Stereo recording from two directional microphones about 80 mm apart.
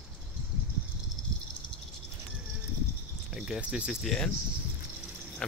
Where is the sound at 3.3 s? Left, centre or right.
Centre.